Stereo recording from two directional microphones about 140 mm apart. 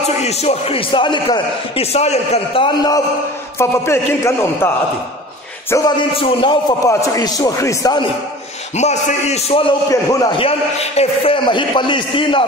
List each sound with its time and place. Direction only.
0.0 s a man's voice: 50° left (ahead or behind); by 1.9 s 35° left (ahead or behind)
1.9 s a man's voice: 50° left (ahead or behind); by 3.0 s 35° left (ahead or behind)
3.5 s a man's voice: 20° left (ahead or behind)
6.1 s a man's voice: 35° left (ahead or behind)
6.8 s a man's voice: 20° left (ahead or behind)
8.7 s a man's voice: 50° left (ahead or behind)
9.8 s a man's voice: 25° left (ahead or behind)
10.3 s a man's voice: 45° left (ahead or behind)